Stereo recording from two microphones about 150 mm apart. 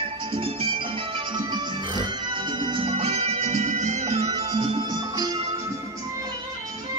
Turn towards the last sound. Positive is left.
turn(degrees=-30)  # may be behind; listen again after turning